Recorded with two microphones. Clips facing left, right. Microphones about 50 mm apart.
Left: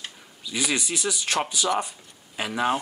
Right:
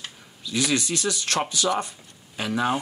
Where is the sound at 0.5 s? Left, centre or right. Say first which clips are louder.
Right 3 dB; centre.